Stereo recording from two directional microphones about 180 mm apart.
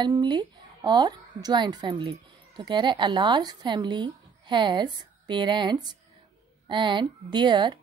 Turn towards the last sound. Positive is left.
turn(degrees=-25)  # may be behind; listen again after turning